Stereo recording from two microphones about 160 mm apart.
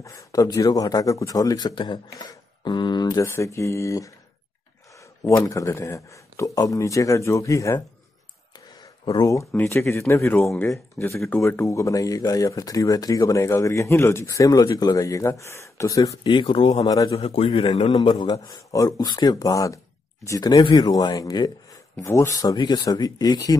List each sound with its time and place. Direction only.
0.0 s speech: 20° left (ahead or behind)
5.5 s speech: 20° left (ahead or behind)
8.5 s a sound: 25° left (ahead or behind)
9.5 s speech: 10° left (ahead or behind)
17.2 s a man's voice: 35° left (ahead or behind)
17.9 s speech: 25° left (ahead or behind)